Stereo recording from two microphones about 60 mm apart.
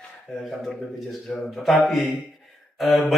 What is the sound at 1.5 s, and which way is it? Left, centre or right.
Speech, centre.